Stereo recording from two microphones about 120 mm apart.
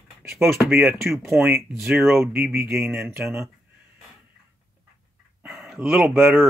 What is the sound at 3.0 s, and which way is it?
Speech, 20° right (ahead or behind).